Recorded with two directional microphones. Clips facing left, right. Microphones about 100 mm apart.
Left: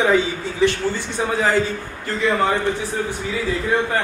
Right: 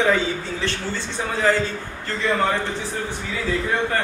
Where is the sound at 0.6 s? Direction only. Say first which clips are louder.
Left 7 dB; 15° left (ahead or behind).